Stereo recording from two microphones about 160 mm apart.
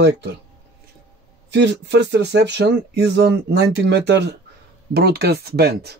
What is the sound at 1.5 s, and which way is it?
Speech, 90° right.